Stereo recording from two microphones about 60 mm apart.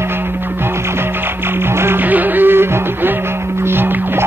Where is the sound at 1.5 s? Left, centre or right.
Right.